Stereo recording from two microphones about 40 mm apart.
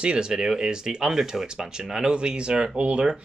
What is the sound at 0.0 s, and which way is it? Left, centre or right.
Speech, right.